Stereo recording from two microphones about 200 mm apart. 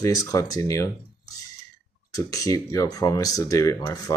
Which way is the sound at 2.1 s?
20° left (ahead or behind).